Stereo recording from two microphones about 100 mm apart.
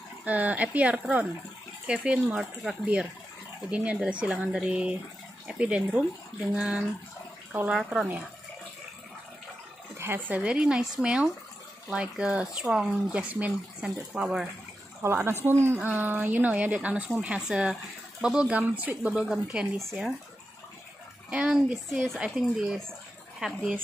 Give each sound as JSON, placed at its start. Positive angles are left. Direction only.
{"t": 0.2, "sound": "speech", "side_deg": -15}
{"t": 9.9, "sound": "speech", "side_deg": -20}
{"t": 15.0, "sound": "speech", "side_deg": -25}
{"t": 19.8, "sound": "speech", "side_deg": 0}
{"t": 21.3, "sound": "speech", "side_deg": -10}